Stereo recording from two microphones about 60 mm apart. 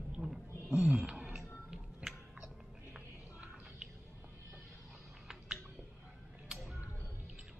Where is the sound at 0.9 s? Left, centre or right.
Centre.